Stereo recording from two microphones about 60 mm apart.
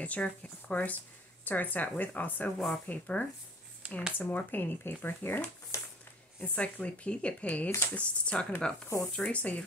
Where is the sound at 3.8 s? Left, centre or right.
Centre.